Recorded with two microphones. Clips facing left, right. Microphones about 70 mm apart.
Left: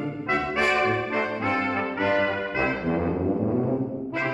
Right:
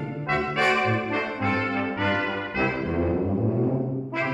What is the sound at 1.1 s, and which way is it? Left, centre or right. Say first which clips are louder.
Brass instrument: left 1 dB; centre.